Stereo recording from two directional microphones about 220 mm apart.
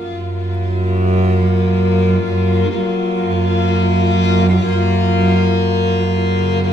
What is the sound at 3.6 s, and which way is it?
Music, 55° left (ahead or behind).